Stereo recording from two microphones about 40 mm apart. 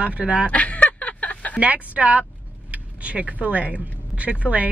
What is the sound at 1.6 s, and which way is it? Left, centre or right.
Speech, right.